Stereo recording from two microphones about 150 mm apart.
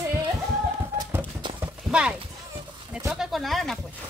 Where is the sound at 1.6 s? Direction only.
10° right (ahead or behind).